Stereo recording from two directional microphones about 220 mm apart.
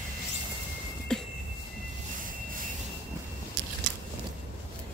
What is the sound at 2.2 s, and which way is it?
Vehicle, 40° right (ahead or behind).